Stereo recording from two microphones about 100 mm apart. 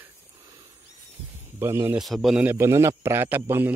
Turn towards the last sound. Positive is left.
turn(degrees=-20)  # may be behind; listen again after turning